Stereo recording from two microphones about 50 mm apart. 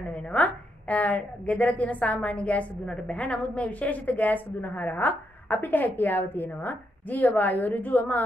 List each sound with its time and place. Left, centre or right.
0.1 s a woman's voice: left